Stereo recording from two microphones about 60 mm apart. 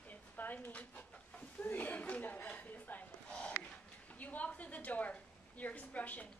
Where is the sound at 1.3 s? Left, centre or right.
Left.